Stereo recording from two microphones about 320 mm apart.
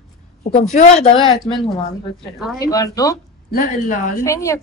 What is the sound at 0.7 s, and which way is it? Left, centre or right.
Speech, centre.